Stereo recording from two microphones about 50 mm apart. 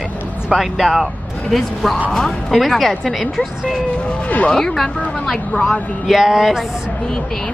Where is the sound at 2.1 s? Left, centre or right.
Centre.